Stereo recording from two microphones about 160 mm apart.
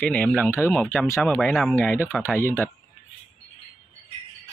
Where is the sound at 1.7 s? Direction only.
15° left (ahead or behind).